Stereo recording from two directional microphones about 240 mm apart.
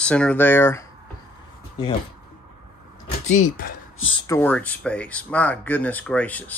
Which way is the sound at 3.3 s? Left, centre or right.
Left.